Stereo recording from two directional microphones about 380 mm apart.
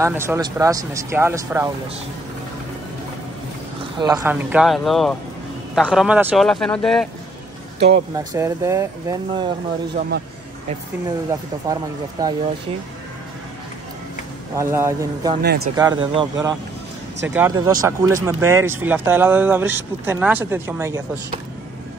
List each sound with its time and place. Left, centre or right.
0.0 s speech: centre
4.0 s speech: centre
8.2 s speech: centre
9.9 s speech: right
11.1 s speech: centre
14.6 s speech: centre
15.4 s speech: right
15.7 s speech: centre